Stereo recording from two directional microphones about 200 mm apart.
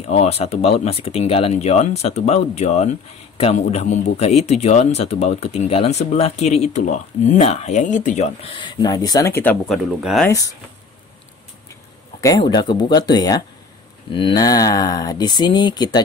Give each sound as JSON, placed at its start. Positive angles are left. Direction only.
{"t": 0.0, "sound": "speech", "side_deg": 35}
{"t": 8.5, "sound": "speech", "side_deg": 20}
{"t": 10.2, "sound": "speech", "side_deg": 15}
{"t": 12.2, "sound": "speech", "side_deg": 20}